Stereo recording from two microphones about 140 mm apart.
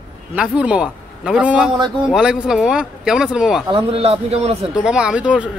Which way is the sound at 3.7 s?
45° right (ahead or behind).